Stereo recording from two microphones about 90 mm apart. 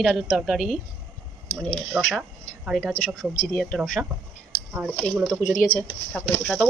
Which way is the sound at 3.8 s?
Centre (ahead or behind).